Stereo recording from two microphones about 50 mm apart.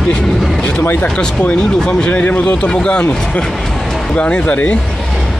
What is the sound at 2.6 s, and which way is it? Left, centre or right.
Speech, centre.